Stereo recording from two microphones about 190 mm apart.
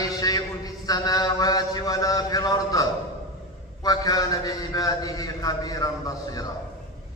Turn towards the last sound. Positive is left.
turn(degrees=20)  # may be behind; listen again after turning